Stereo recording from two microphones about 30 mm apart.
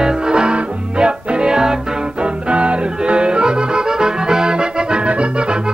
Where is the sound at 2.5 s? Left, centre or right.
Right.